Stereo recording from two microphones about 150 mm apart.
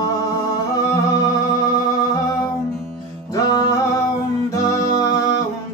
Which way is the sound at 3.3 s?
25° left (ahead or behind).